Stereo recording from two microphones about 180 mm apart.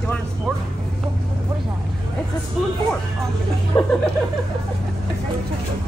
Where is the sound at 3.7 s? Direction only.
20° left (ahead or behind).